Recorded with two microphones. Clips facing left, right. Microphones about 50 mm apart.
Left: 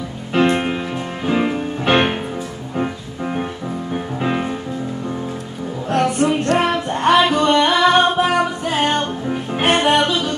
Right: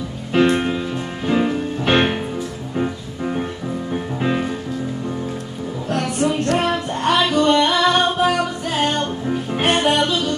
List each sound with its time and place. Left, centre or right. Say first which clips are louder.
0.4 s music: even; centre
5.9 s music: left 4 dB; left; by 9.7 s centre
9.7 s music: left 2 dB; left